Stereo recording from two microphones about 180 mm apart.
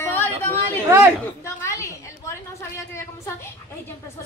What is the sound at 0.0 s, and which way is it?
Chatter, 10° left (ahead or behind).